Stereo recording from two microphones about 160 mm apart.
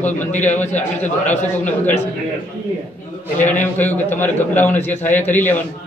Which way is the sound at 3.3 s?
10° left (ahead or behind).